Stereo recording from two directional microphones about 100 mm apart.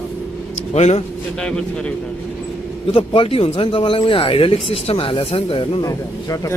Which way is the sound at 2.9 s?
65° left (ahead or behind).